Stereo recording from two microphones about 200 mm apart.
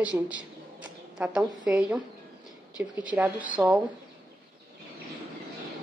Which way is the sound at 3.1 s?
10° right (ahead or behind).